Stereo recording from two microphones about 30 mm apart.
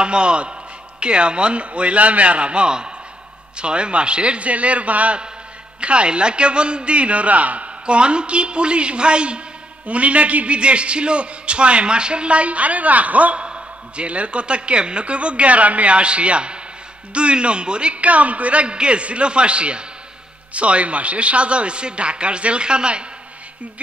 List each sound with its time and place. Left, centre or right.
0.0 s a man's voice: right
5.8 s a man's voice: right
9.8 s a man's voice: right
13.4 s a man's voice: right
18.0 s a man's voice: right